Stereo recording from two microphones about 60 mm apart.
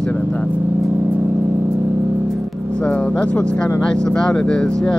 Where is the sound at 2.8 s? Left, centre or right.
Centre.